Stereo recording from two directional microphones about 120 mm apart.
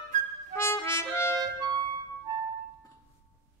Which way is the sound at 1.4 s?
35° right (ahead or behind).